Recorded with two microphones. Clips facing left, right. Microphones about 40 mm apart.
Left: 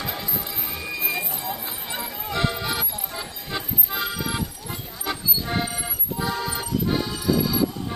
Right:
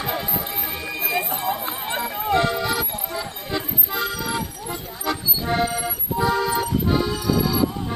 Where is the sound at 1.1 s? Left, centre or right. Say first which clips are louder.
Right 6 dB; right.